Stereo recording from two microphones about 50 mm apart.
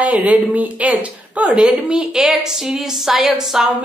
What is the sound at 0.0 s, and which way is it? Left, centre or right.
A woman's voice, right.